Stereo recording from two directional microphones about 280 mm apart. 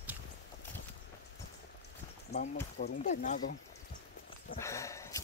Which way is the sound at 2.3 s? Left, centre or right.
Left.